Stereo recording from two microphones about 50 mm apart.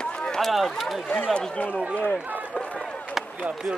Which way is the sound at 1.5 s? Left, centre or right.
Left.